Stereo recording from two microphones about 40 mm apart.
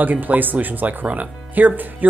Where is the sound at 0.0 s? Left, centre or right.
Right.